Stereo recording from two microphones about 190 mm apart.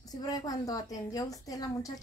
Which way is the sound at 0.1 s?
20° left (ahead or behind).